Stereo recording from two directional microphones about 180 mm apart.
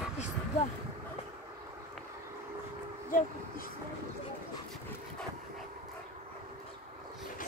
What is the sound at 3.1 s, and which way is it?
Speech, 50° left (ahead or behind).